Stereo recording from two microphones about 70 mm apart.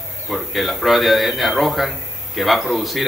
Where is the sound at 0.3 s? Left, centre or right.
Centre.